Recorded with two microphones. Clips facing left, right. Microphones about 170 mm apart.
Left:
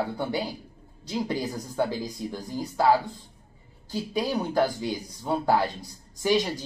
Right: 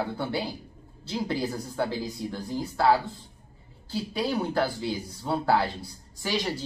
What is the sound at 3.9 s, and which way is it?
A man's voice, 15° left (ahead or behind).